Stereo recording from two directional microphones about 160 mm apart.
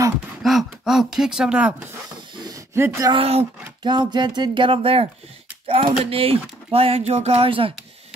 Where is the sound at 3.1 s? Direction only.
35° right (ahead or behind).